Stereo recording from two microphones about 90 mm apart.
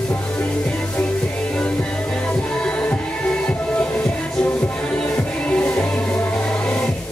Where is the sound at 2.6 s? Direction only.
15° left (ahead or behind).